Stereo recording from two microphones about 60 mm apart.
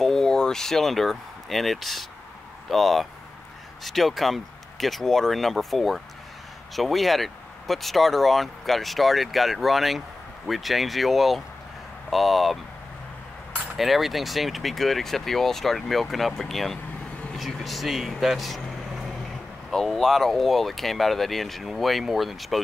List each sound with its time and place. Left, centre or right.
0.0 s speech: centre
13.7 s speech: centre